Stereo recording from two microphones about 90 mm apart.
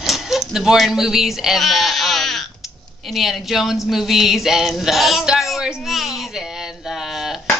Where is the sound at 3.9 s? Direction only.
5° right (ahead or behind).